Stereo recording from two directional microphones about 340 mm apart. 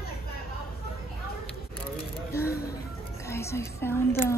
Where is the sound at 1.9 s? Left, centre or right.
Centre.